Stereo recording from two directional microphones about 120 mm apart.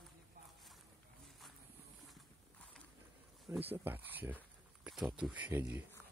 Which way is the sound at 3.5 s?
20° right (ahead or behind).